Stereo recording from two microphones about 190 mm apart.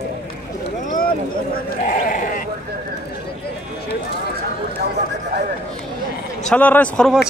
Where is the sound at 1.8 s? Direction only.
45° left (ahead or behind).